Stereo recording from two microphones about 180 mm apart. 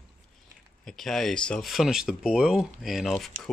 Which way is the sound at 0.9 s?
Centre (ahead or behind).